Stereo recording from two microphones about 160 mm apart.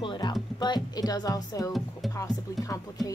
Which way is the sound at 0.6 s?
25° left (ahead or behind).